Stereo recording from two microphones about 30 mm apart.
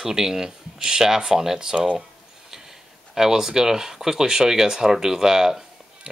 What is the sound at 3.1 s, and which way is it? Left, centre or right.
Speech, centre.